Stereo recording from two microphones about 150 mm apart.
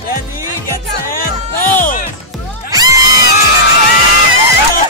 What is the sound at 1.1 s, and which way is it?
Music, 65° left (ahead or behind).